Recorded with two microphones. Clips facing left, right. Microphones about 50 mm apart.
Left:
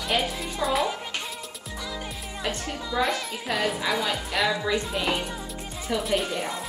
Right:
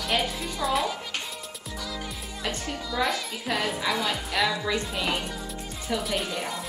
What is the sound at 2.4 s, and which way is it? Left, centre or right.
Speech, centre.